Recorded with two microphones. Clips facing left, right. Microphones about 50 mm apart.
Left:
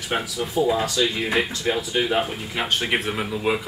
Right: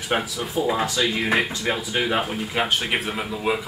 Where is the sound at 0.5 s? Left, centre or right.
Right.